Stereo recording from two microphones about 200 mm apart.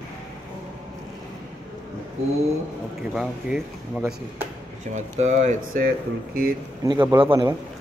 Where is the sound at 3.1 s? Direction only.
Centre (ahead or behind).